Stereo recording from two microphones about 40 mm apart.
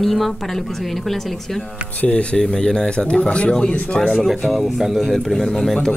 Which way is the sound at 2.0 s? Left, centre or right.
Left.